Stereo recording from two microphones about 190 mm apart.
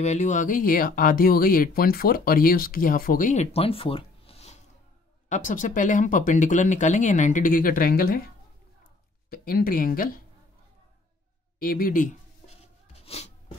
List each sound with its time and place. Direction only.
0.0 s speech: 35° left (ahead or behind)
5.3 s speech: 40° left (ahead or behind)
9.3 s speech: 50° left (ahead or behind)
11.6 s a sound: 50° left (ahead or behind); by 13.3 s 35° left (ahead or behind)